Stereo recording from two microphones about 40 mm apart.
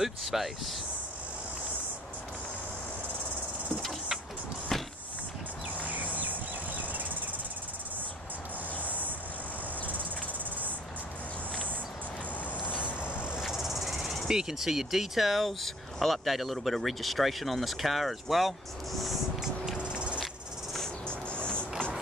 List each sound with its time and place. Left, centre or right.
0.0 s speech: centre
5.8 s a sound: right
6.1 s insect: right
8.8 s cricket: right
12.5 s vehicle: left
13.5 s cricket: centre
14.3 s speech: centre
19.8 s a sound: right
21.1 s music: left